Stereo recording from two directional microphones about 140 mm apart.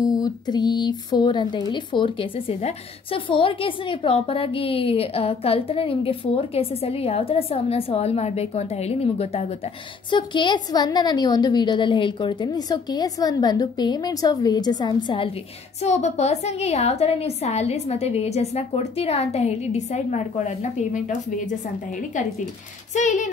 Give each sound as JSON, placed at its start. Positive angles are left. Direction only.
{"t": 0.0, "sound": "speech", "side_deg": 25}
{"t": 10.1, "sound": "a woman's voice", "side_deg": 35}
{"t": 15.8, "sound": "speech", "side_deg": 55}
{"t": 22.9, "sound": "speech", "side_deg": 60}